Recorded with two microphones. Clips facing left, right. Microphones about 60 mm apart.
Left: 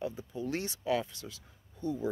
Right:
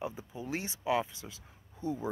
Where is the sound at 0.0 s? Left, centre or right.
Centre.